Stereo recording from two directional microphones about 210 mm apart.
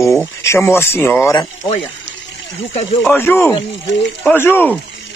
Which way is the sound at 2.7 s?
30° left (ahead or behind).